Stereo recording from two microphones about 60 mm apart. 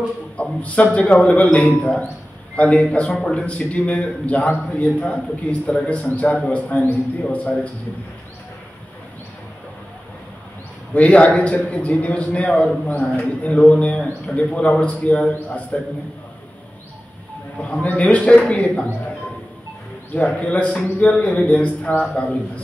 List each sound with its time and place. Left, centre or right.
0.4 s a man's voice: left
10.9 s a man's voice: left
17.6 s a man's voice: centre
20.2 s a man's voice: left
22.1 s a man's voice: centre